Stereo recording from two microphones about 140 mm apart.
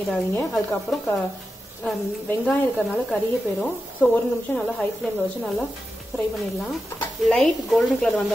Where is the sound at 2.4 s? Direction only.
5° left (ahead or behind).